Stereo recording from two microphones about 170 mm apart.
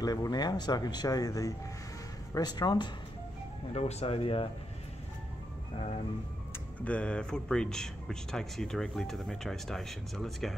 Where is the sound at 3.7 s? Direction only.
35° left (ahead or behind).